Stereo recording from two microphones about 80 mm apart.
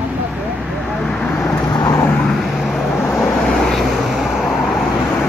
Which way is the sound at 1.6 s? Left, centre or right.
Left.